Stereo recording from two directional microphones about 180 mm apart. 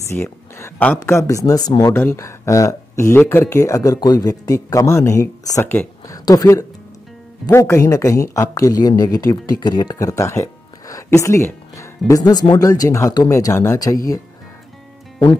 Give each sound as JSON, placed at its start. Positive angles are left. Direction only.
{"t": 0.1, "sound": "speech", "side_deg": 15}